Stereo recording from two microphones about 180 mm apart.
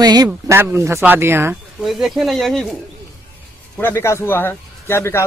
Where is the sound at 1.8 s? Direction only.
Centre (ahead or behind).